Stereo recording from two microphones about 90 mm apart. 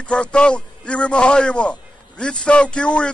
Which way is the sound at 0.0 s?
10° left (ahead or behind).